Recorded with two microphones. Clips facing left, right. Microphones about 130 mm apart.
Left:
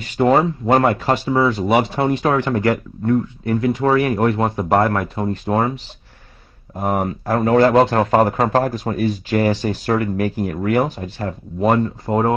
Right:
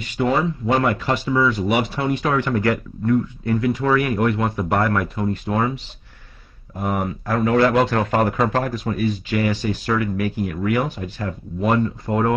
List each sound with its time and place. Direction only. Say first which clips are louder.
0.2 s speech: left 5 dB; 40° left (ahead or behind)
6.8 s speech: left 3 dB; 35° left (ahead or behind)